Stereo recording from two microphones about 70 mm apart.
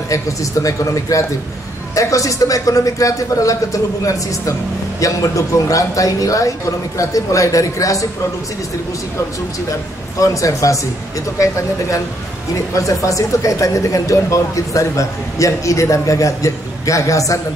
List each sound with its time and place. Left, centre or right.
0.1 s speech: left
10.2 s speech: left
12.7 s speech: left